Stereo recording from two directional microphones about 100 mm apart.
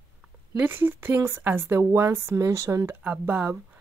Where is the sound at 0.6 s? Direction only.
20° right (ahead or behind).